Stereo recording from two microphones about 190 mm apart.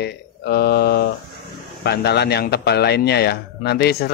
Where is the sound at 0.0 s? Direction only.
60° left (ahead or behind).